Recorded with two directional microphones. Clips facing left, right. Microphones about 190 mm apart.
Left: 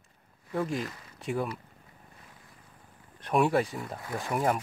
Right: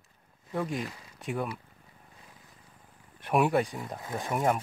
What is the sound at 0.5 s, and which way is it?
Speech, centre (ahead or behind).